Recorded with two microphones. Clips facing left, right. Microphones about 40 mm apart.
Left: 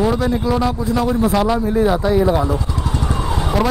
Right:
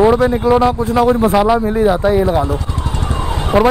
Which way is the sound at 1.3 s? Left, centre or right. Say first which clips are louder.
Right 4 dB; centre.